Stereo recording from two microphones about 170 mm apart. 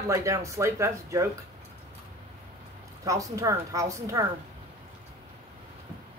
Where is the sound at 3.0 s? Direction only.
20° right (ahead or behind).